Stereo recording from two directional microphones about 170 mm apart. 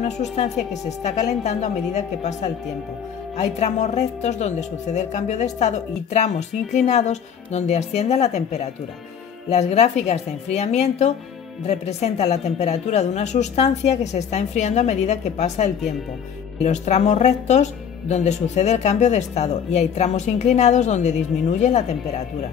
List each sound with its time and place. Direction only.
0.0 s speech: 40° left (ahead or behind)